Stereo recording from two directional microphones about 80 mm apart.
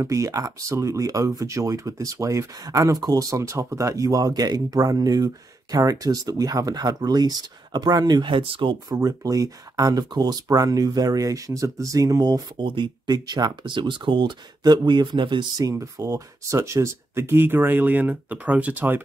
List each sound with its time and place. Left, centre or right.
0.0 s speech: right
8.2 s speech: right
8.8 s speech: right
12.6 s speech: right
15.7 s speech: right